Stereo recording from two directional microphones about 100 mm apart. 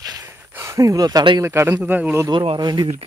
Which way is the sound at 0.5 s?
30° right (ahead or behind).